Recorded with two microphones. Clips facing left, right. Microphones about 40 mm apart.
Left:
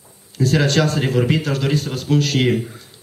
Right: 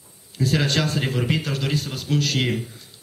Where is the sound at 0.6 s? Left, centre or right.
Centre.